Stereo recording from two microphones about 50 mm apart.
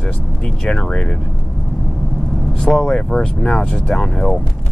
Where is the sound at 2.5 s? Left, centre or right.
Centre.